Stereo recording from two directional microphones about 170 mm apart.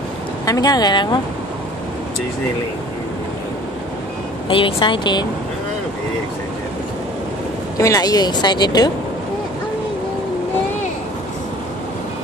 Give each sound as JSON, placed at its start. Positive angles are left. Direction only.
{"t": 0.5, "sound": "speech", "side_deg": 25}
{"t": 4.5, "sound": "speech", "side_deg": 30}
{"t": 7.7, "sound": "speech", "side_deg": 20}